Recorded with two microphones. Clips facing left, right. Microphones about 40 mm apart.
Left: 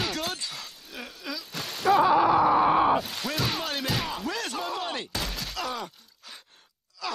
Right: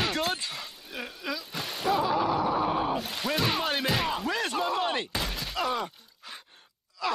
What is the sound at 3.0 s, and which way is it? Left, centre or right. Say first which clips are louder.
Bellow: even; centre.